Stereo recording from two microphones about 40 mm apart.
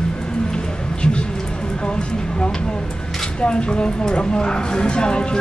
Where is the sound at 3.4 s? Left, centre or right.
Left.